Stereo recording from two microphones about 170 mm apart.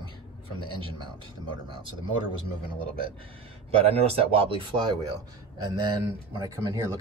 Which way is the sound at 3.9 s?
35° right (ahead or behind).